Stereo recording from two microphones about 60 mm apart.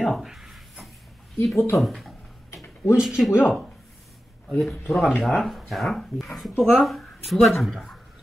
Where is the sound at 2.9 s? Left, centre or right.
Centre.